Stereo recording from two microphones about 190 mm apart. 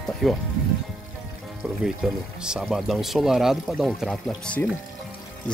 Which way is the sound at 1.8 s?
5° right (ahead or behind).